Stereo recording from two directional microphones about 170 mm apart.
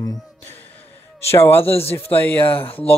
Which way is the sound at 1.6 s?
35° left (ahead or behind).